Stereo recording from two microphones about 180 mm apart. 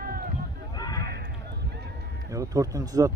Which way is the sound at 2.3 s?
20° right (ahead or behind).